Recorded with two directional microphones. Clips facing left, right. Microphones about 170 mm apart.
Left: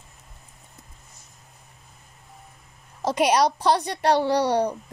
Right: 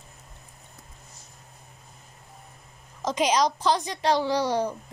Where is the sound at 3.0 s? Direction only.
60° left (ahead or behind).